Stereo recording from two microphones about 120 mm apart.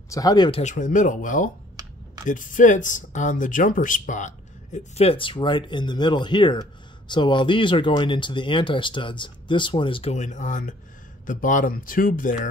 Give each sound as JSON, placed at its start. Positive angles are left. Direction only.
{"t": 0.1, "sound": "speech", "side_deg": 30}
{"t": 0.5, "sound": "speech", "side_deg": 70}
{"t": 4.7, "sound": "speech", "side_deg": 60}
{"t": 10.1, "sound": "speech", "side_deg": 85}